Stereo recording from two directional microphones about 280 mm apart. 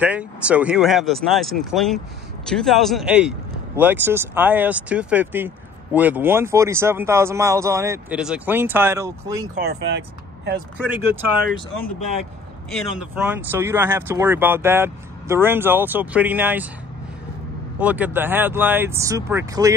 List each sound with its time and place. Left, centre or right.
0.0 s speech: centre
9.6 s speech: right
12.7 s speech: centre
17.7 s speech: centre